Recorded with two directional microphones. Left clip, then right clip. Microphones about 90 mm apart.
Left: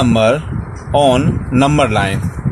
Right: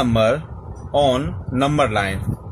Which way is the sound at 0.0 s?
15° left (ahead or behind).